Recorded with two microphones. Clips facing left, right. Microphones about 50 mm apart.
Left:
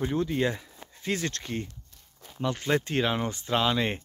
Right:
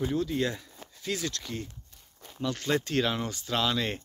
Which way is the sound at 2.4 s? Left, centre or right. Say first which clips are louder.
Left 2 dB; left.